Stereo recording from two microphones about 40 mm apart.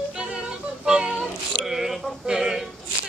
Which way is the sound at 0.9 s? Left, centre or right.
Centre.